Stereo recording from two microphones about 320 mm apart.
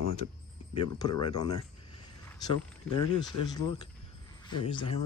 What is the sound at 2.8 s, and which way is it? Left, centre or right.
Speech, left.